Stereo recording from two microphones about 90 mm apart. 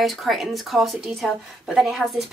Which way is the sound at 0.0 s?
Centre (ahead or behind).